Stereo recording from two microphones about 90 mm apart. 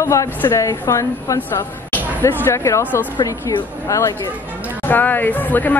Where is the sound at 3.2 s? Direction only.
45° left (ahead or behind).